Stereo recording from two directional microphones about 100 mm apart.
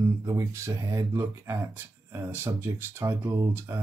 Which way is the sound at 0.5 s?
30° right (ahead or behind).